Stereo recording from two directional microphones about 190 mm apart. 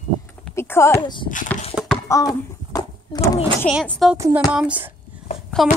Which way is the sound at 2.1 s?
20° left (ahead or behind).